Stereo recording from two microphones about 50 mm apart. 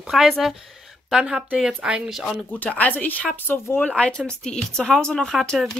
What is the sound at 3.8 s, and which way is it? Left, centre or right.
Speech, left.